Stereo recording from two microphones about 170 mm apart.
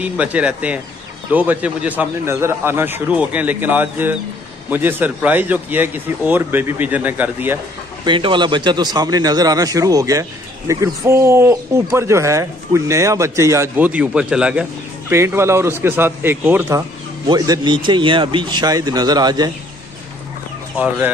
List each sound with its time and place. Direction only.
0.0 s speech: 10° right (ahead or behind)
8.0 s a man's voice: 30° right (ahead or behind)
17.3 s a man's voice: 25° right (ahead or behind)